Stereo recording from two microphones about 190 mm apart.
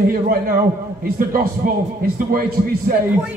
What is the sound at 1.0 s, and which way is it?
Speech, 50° right (ahead or behind).